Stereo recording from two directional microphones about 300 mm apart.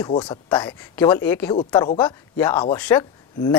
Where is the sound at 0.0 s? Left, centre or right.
Centre.